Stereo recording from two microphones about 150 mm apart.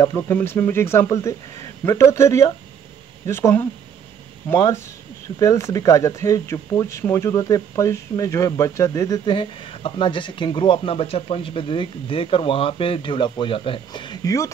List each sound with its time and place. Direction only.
0.0 s speech: 15° left (ahead or behind)